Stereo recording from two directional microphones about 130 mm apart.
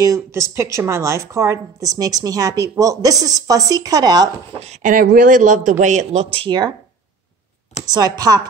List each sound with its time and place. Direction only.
0.0 s speech: 20° right (ahead or behind)
4.6 s a man's voice: 70° right (ahead or behind)
6.4 s speech: 35° right (ahead or behind)
7.8 s speech: 30° right (ahead or behind)